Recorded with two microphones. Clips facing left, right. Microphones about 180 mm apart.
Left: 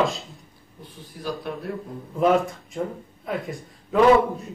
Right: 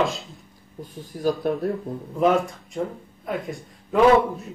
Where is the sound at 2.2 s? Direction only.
Centre (ahead or behind).